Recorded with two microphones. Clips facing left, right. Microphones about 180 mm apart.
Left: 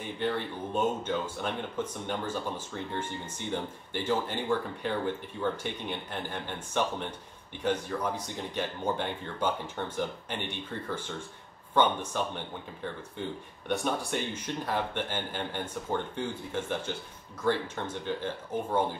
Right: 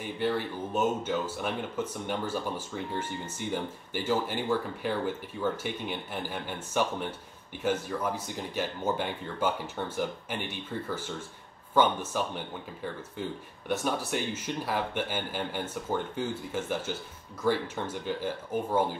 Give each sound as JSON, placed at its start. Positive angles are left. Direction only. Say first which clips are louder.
{"t": 0.2, "sound": "speech", "louder": "right 2 dB", "side_deg": -5}